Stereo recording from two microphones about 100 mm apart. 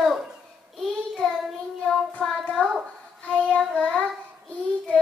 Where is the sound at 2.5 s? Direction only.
5° left (ahead or behind).